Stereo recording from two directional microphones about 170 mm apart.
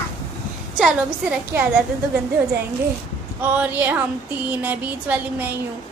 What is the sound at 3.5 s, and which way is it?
A woman's voice, 10° right (ahead or behind).